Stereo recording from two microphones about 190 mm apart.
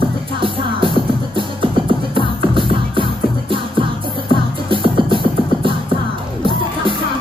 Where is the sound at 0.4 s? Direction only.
25° right (ahead or behind).